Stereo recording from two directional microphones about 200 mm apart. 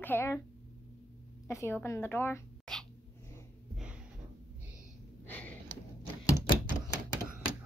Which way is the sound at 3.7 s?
5° right (ahead or behind).